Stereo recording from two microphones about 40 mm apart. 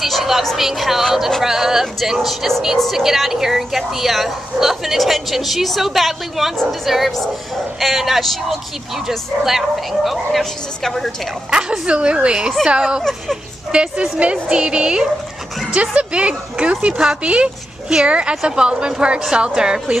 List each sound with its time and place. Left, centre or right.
0.0 s a woman's voice: centre
11.5 s a woman's voice: right
16.9 s a woman's voice: centre
17.2 s speech: right
18.3 s speech: centre